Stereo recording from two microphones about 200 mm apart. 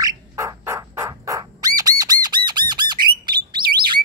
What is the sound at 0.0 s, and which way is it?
Bird, 15° right (ahead or behind).